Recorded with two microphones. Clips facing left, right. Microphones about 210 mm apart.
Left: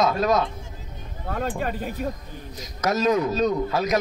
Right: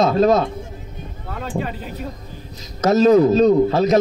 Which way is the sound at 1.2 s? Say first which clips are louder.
Right 1 dB; 45° left (ahead or behind).